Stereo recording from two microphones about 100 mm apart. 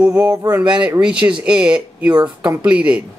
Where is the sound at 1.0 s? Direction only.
10° right (ahead or behind).